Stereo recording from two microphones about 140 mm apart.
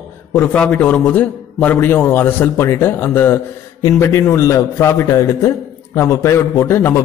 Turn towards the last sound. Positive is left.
turn(degrees=20)  # may be behind; listen again after turning